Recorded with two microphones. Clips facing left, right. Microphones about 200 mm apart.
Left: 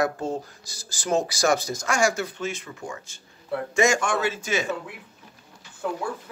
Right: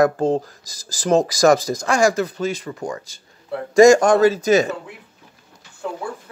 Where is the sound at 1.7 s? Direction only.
35° right (ahead or behind).